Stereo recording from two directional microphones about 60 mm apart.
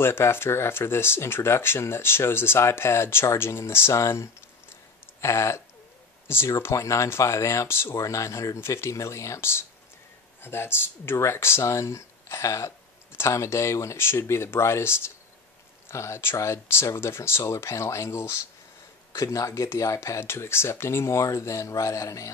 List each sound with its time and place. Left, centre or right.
0.0 s speech: left
6.2 s speech: left
6.6 s speech: left
8.0 s speech: left
19.1 s speech: left